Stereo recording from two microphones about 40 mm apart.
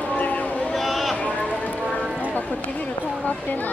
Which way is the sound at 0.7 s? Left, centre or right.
Centre.